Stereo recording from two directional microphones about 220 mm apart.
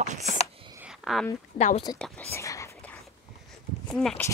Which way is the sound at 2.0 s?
5° left (ahead or behind).